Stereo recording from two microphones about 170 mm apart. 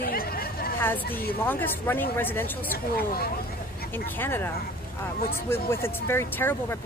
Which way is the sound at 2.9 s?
65° left (ahead or behind).